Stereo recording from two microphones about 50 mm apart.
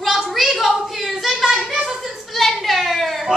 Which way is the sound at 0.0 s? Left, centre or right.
Centre.